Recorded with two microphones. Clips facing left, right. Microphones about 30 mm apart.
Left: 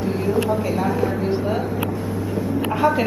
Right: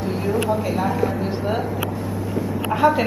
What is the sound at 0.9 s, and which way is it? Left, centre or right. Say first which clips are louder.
Speech: even; left.